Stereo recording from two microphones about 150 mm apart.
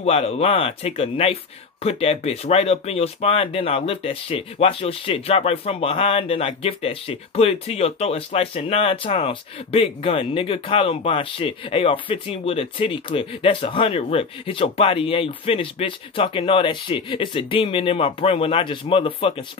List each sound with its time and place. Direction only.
0.0 s speech: 40° left (ahead or behind)